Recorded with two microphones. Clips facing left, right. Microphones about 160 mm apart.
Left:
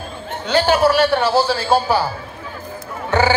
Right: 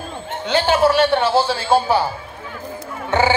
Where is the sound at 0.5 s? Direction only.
20° right (ahead or behind).